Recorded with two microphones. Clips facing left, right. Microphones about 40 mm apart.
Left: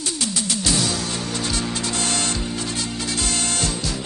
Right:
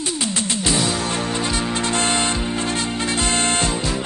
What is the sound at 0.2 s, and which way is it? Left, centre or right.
Music, right.